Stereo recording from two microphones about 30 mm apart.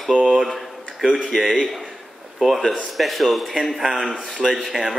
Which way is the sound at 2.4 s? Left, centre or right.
Centre.